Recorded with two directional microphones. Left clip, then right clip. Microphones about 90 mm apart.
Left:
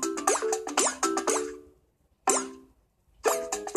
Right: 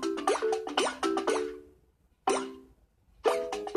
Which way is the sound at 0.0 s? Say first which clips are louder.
Left 1 dB; 10° left (ahead or behind).